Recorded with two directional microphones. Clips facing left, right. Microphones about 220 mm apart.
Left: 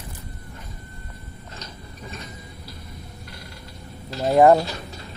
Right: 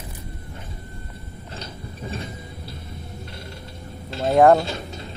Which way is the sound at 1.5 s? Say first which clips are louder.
Right 6 dB; 30° right (ahead or behind).